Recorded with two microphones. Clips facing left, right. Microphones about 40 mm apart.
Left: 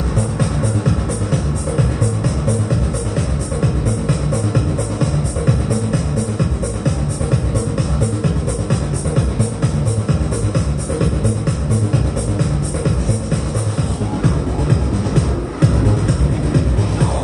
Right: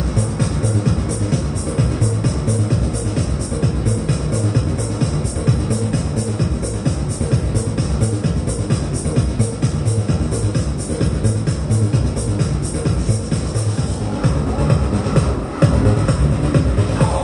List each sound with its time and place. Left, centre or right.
14.7 s music: right